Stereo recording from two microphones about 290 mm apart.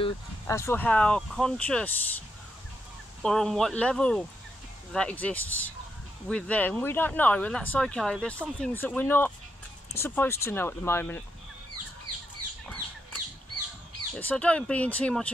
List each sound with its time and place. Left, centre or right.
0.0 s speech: centre
14.1 s speech: centre